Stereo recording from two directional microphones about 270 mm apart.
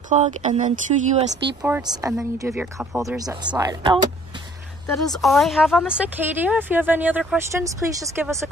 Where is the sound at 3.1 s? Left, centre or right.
Centre.